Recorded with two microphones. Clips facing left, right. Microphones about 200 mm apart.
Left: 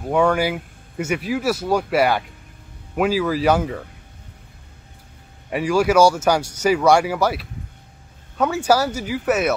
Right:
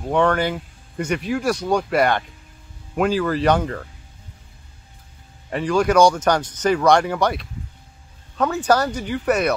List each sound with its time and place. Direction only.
0.0 s speech: 5° left (ahead or behind)
5.5 s speech: 10° left (ahead or behind)